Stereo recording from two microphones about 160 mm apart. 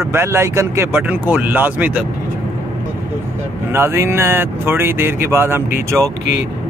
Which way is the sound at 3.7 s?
15° right (ahead or behind).